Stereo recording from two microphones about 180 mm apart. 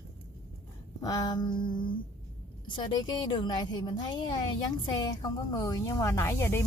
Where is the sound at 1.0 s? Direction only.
20° left (ahead or behind).